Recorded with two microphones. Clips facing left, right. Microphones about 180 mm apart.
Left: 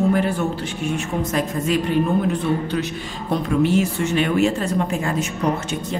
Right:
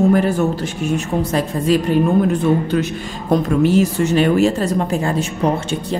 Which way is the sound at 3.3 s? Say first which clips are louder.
Right 4 dB; 40° right (ahead or behind).